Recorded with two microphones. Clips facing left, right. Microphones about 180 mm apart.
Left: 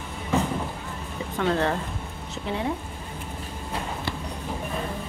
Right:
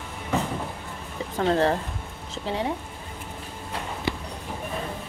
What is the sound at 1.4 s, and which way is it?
Speech, 35° right (ahead or behind).